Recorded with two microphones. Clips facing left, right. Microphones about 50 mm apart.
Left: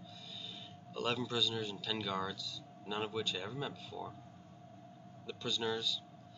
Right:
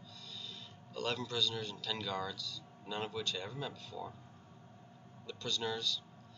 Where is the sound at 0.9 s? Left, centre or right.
Centre.